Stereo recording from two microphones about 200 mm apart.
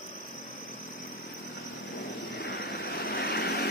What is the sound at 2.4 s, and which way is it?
Vehicle, 55° left (ahead or behind).